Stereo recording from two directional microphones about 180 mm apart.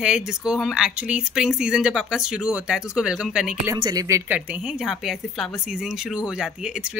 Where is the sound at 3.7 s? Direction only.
20° right (ahead or behind).